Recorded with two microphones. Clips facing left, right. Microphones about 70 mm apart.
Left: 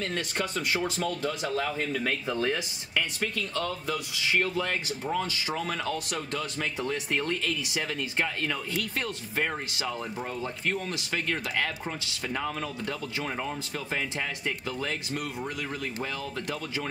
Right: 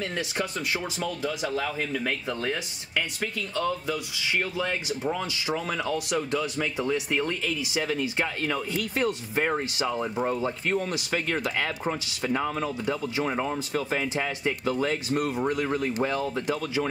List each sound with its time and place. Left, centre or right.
0.0 s speech: centre
15.0 s speech: right